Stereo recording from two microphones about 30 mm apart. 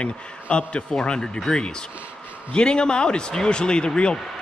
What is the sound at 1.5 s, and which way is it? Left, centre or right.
Speech, centre.